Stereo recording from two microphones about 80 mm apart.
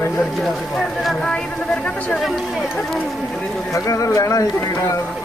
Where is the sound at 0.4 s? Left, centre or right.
Centre.